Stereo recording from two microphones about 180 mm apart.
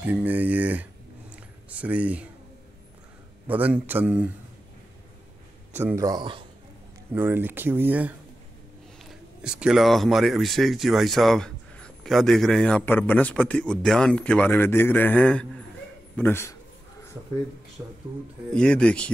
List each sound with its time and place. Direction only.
0.0 s speech: 10° right (ahead or behind)
1.3 s a sound: 10° right (ahead or behind)
3.4 s speech: 10° right (ahead or behind)
5.8 s speech: 15° right (ahead or behind)
7.2 s speech: 10° right (ahead or behind)
9.4 s a man's voice: 5° right (ahead or behind); by 16.5 s 15° left (ahead or behind)
17.8 s speech: 15° right (ahead or behind)
18.5 s speech: 5° left (ahead or behind)